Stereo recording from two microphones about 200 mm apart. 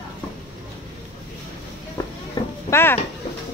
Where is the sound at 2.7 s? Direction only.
10° left (ahead or behind).